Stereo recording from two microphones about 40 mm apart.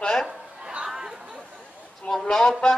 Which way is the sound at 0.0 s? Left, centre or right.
Centre.